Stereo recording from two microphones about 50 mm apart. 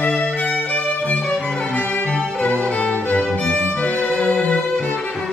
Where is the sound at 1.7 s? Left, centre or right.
Left.